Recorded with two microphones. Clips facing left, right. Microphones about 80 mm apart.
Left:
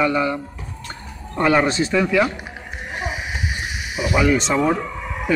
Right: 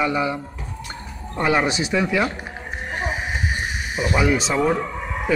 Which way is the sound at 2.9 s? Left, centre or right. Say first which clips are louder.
Right 1 dB; right.